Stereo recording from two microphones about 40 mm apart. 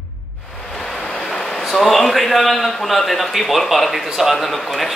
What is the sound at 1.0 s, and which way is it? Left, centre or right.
Vehicle, centre.